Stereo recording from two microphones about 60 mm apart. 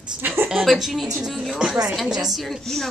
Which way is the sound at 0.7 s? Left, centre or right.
Centre.